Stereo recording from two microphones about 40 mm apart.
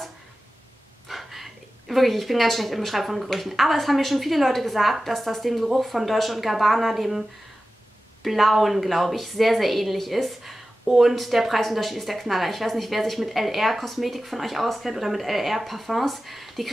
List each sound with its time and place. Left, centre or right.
1.0 s a woman's voice: centre